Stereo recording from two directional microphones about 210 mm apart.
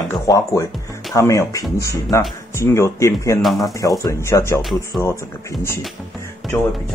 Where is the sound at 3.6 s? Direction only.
15° left (ahead or behind).